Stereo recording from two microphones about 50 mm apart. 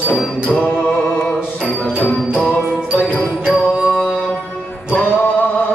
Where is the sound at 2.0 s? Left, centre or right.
Left.